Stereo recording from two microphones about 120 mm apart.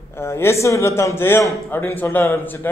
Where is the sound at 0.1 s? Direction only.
20° left (ahead or behind).